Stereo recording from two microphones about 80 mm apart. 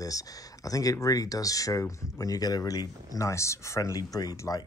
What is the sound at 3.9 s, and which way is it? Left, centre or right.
Speech, left.